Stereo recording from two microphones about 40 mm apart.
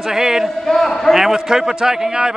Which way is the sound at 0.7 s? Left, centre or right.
Centre.